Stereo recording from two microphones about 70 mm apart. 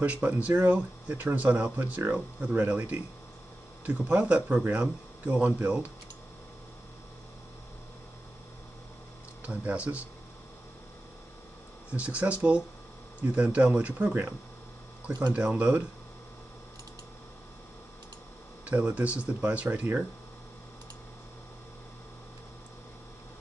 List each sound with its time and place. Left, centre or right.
0.0 s speech: centre
9.4 s speech: centre
11.9 s speech: centre
15.3 s speech: centre
18.7 s speech: centre